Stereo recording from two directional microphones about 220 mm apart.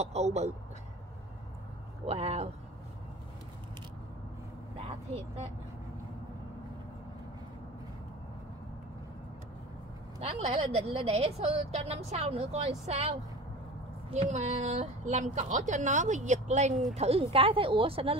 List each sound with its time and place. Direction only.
0.0 s a woman's voice: 30° right (ahead or behind)
2.0 s a woman's voice: 30° right (ahead or behind)
10.2 s a woman's voice: 25° right (ahead or behind)
14.1 s a woman's voice: 30° right (ahead or behind)